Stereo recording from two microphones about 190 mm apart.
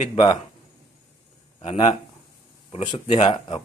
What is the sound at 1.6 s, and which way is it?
Speech, 25° left (ahead or behind).